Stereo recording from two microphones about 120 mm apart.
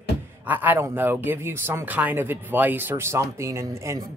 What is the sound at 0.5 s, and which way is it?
Speech, 15° right (ahead or behind).